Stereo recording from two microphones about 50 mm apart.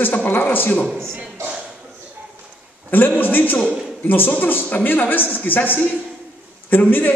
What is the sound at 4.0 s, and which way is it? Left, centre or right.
A man's voice, left.